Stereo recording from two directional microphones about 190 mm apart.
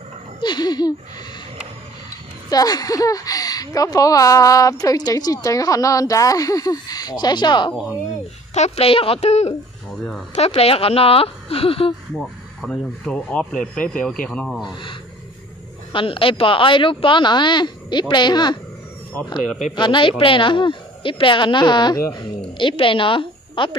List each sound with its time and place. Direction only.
0.4 s speech: 20° left (ahead or behind)
2.5 s speech: 20° left (ahead or behind)
12.2 s speech: 5° left (ahead or behind)
15.9 s speech: 25° left (ahead or behind)
19.7 s speech: 25° left (ahead or behind)